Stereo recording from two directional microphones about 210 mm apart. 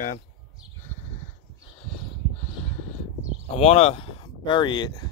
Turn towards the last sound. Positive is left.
turn(degrees=20)  # may be behind; listen again after turning